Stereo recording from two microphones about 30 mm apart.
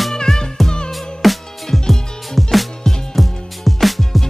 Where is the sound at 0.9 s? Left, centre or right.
Centre.